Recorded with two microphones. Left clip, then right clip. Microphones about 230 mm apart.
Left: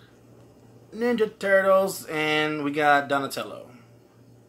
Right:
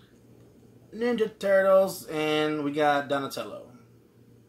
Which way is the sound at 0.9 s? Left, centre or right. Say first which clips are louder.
Left 3 dB; centre.